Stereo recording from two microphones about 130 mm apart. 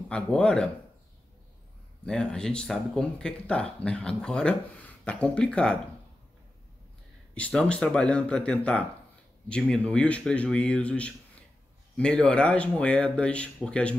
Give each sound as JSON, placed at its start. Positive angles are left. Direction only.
{"t": 0.1, "sound": "speech", "side_deg": 10}
{"t": 2.0, "sound": "speech", "side_deg": 5}
{"t": 7.3, "sound": "speech", "side_deg": 10}